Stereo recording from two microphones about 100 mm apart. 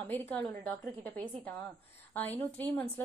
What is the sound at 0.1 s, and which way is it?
A woman's voice, 20° left (ahead or behind).